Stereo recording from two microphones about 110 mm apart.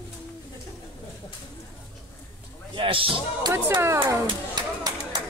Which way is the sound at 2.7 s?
55° right (ahead or behind).